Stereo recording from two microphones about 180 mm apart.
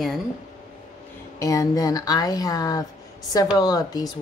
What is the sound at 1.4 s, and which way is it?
Speech, 20° left (ahead or behind).